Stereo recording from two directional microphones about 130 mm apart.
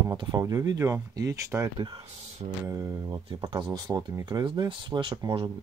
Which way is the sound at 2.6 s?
25° right (ahead or behind).